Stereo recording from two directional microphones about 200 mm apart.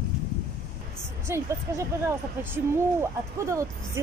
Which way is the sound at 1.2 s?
15° right (ahead or behind).